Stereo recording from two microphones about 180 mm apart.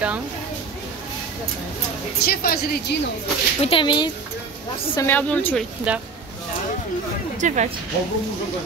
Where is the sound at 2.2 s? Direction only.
55° left (ahead or behind).